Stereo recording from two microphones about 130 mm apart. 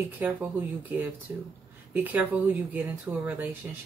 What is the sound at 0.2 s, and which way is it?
Speech, 15° right (ahead or behind).